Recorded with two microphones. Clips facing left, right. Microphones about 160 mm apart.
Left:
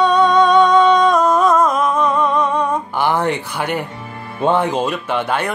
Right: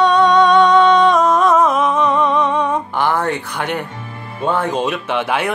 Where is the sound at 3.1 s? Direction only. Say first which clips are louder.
Left 2 dB; 20° left (ahead or behind).